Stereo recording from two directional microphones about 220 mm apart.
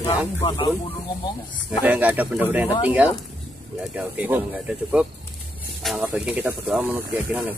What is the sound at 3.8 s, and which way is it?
Speech, 5° right (ahead or behind).